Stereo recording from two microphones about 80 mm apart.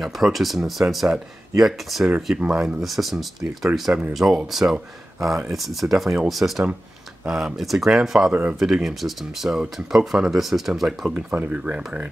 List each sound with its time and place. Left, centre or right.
0.0 s speech: centre
8.3 s speech: centre
8.5 s speech: centre
11.1 s speech: centre